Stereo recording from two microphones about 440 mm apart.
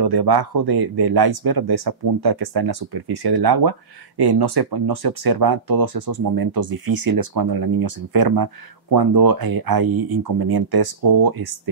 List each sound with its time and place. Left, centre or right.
0.0 s speech: right